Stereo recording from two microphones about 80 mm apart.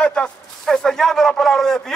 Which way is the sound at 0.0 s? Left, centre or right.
Centre.